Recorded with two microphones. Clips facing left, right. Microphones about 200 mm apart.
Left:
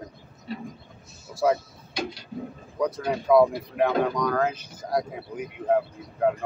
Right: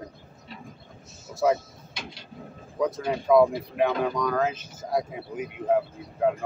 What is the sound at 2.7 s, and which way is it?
Speech, centre (ahead or behind).